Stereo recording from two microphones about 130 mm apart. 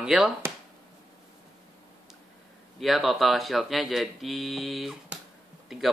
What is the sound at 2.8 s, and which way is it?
Speech, centre (ahead or behind).